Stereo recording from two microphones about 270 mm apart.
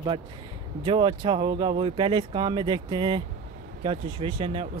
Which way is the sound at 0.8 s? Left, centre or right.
Centre.